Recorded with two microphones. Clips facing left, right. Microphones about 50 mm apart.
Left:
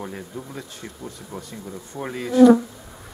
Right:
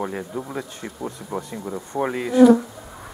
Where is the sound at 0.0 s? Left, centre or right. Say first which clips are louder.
Right 6 dB; centre.